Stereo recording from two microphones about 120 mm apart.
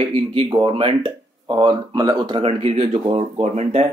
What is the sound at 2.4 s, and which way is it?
Speech, 55° right (ahead or behind).